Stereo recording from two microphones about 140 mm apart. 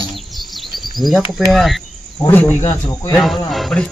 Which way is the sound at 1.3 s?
Centre (ahead or behind).